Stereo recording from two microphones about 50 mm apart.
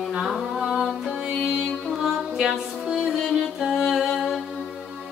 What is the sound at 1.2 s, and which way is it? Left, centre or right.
Music, centre.